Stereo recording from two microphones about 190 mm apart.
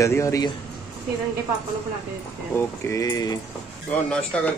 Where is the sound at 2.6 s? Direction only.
15° left (ahead or behind).